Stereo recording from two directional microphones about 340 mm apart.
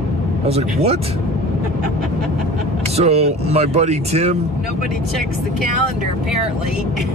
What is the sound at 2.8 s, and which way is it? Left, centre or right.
Speech, centre.